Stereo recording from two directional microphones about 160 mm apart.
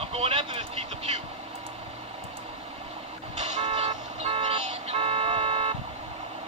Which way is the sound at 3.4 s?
45° right (ahead or behind).